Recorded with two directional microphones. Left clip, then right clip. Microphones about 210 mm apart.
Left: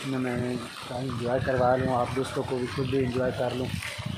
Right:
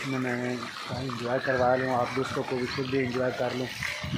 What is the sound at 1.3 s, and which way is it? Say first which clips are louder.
Speech: left 1 dB; centre (ahead or behind).